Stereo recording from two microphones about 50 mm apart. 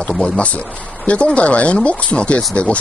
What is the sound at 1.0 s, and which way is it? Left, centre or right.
Speech, left.